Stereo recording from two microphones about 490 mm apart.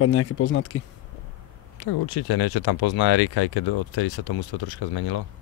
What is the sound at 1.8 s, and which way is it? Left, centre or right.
Speech, left.